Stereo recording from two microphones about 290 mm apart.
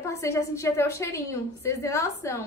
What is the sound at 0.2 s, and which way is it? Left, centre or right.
A woman's voice, centre.